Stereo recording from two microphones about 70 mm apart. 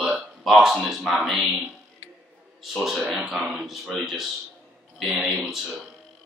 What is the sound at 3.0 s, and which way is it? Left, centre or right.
Speech, centre.